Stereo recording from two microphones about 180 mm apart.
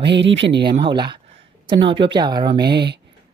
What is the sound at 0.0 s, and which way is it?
Speech, 80° right.